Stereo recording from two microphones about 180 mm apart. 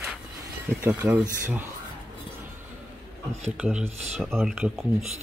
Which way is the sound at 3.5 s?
5° right (ahead or behind).